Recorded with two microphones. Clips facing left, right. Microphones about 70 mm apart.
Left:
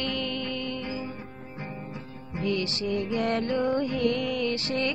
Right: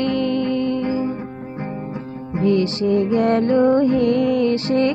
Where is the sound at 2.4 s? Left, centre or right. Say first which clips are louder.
Right 11 dB; right.